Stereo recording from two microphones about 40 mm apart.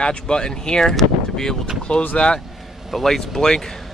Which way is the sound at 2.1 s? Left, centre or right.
Left.